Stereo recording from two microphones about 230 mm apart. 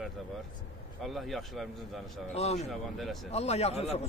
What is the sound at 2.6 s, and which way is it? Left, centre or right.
Speech, centre.